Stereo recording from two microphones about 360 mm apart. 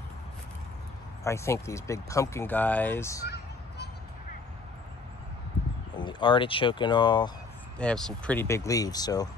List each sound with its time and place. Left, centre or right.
1.2 s speech: centre
3.3 s a sound: left
5.9 s speech: centre